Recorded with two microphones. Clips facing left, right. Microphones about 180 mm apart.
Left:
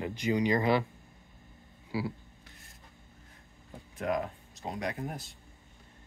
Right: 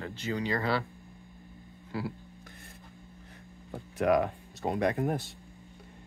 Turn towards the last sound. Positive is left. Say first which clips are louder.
# right 8 dB
turn(degrees=-60)  # may be behind; listen again after turning